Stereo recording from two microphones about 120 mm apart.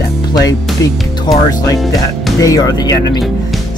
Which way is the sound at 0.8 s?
30° left (ahead or behind).